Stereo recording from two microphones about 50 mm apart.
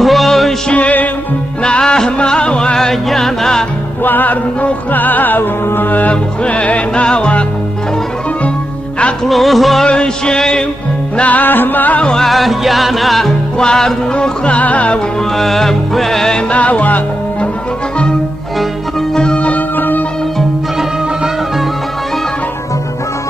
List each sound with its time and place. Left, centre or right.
0.0 s music: centre
0.7 s music: left
1.6 s music: centre
4.0 s music: left
9.3 s music: centre
9.8 s music: centre
11.1 s music: left
12.0 s music: centre
12.3 s music: centre
13.6 s music: centre; by 15.0 s left
15.3 s music: centre
16.4 s music: left
19.1 s music: centre